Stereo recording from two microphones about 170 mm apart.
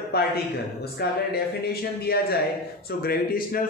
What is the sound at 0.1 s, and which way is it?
Speech, 70° left (ahead or behind).